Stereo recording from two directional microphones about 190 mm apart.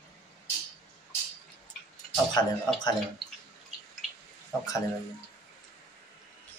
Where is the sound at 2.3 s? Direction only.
20° left (ahead or behind).